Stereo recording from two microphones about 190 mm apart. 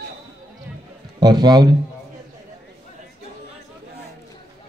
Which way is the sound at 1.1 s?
20° right (ahead or behind).